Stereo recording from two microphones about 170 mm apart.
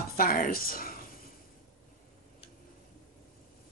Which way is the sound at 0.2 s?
55° left (ahead or behind).